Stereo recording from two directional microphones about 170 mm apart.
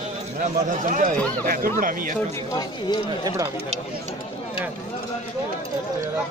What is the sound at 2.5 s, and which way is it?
Speech, 25° left (ahead or behind).